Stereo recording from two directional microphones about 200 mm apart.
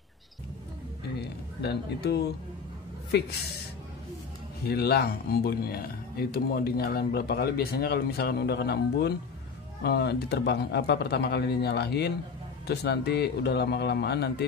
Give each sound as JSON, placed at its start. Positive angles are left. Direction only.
{"t": 1.2, "sound": "speech", "side_deg": 55}
{"t": 4.6, "sound": "a man's voice", "side_deg": 50}